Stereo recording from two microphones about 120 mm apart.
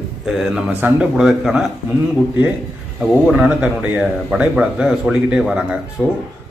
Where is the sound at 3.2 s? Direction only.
10° right (ahead or behind).